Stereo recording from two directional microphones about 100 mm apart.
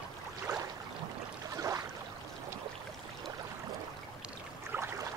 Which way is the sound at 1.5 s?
35° right (ahead or behind).